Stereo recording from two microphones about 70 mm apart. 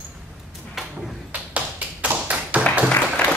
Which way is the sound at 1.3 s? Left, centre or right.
Right.